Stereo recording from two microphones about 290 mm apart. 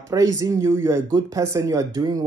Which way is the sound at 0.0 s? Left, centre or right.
Centre.